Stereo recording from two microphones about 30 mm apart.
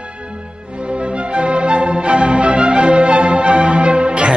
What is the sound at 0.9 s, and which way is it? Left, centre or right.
Music, right.